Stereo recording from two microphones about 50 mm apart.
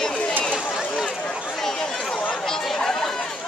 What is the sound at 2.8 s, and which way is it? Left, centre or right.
Chatter, centre.